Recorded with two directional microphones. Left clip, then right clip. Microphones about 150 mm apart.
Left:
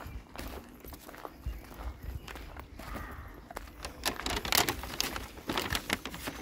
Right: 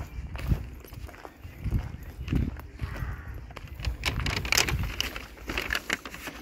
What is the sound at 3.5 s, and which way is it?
Horse, 45° left (ahead or behind).